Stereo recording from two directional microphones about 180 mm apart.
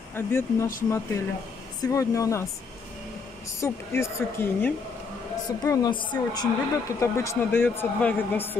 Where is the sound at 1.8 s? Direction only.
15° left (ahead or behind).